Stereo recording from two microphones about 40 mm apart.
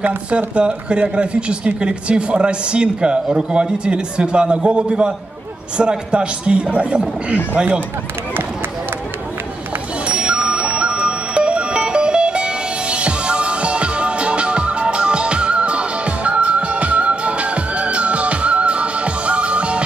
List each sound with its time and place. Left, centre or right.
0.0 s speech: right
0.6 s speech: right
10.0 s music: right